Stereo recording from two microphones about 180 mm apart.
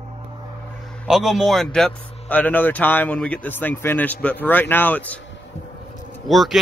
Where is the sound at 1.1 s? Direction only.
Centre (ahead or behind).